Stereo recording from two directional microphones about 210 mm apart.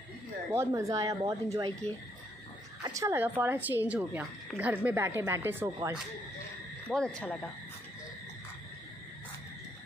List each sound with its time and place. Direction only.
0.5 s a woman's voice: 15° right (ahead or behind)
2.8 s a woman's voice: 15° right (ahead or behind)
6.9 s speech: 5° left (ahead or behind)